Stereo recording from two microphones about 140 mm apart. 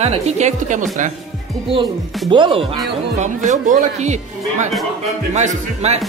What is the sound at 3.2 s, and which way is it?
Speech, 65° right (ahead or behind).